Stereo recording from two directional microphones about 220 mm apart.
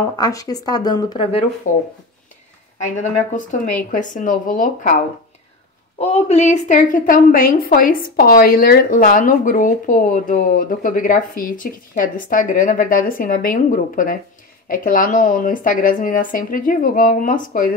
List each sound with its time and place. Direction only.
0.0 s speech: 15° left (ahead or behind)
1.6 s a woman's voice: 35° left (ahead or behind)
5.9 s a woman's voice: 30° left (ahead or behind)